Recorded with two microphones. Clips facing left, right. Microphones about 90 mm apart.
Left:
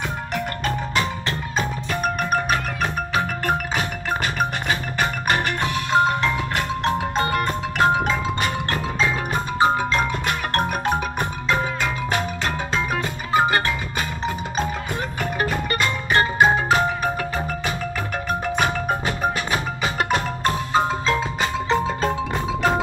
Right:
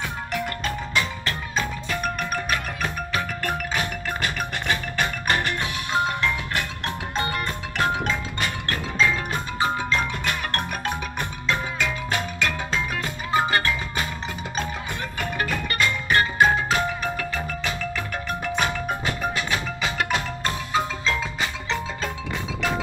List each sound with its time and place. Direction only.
0.3 s music: 30° left (ahead or behind)
2.0 s music: 50° left (ahead or behind)
2.5 s music: 25° left (ahead or behind)
10.6 s music: 45° left (ahead or behind); by 21.0 s 30° left (ahead or behind)
21.1 s percussion: 25° left (ahead or behind)
22.0 s music: 40° left (ahead or behind)